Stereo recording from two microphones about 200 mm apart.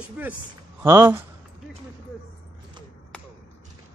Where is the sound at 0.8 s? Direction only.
10° right (ahead or behind).